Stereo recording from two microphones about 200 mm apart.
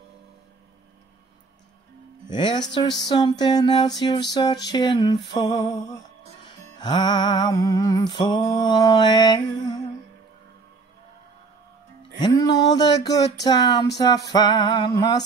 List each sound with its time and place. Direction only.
2.2 s speech: 20° left (ahead or behind)
3.1 s music: 20° left (ahead or behind)
12.2 s music: 20° left (ahead or behind)